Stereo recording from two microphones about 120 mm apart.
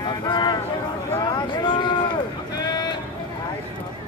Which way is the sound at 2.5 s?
35° left (ahead or behind).